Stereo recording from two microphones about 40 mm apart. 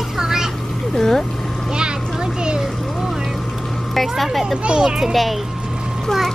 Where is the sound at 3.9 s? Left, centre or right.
Centre.